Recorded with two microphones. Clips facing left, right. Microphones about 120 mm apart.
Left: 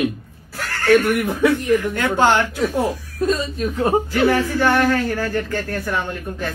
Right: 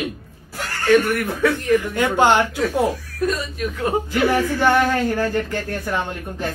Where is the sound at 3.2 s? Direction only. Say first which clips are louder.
Left 3 dB; 25° left (ahead or behind).